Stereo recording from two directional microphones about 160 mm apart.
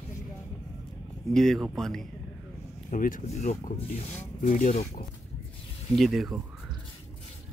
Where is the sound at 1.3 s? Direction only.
Centre (ahead or behind).